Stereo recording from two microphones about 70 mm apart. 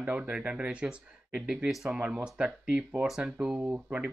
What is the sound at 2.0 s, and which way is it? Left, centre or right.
Speech, centre.